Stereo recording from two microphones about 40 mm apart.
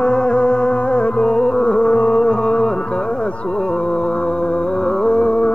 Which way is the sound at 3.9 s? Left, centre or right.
Left.